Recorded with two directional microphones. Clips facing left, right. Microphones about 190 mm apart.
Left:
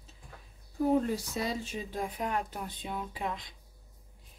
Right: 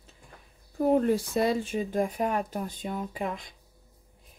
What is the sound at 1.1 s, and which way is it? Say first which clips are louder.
Speech: right 8 dB; 60° right (ahead or behind).